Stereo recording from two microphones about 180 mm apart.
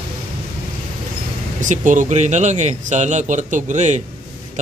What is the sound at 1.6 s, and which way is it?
Speech, 45° right (ahead or behind).